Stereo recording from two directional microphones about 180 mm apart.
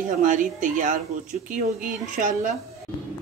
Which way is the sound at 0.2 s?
45° right (ahead or behind).